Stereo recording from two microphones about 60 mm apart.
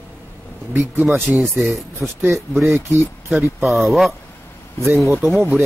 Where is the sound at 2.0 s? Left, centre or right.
Right.